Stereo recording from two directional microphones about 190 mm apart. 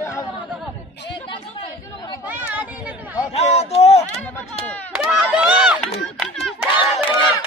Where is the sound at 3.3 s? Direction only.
35° left (ahead or behind).